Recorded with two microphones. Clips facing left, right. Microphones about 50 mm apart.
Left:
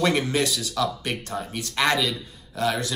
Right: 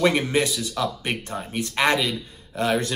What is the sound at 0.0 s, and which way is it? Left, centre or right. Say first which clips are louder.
Speech: right 2 dB; centre.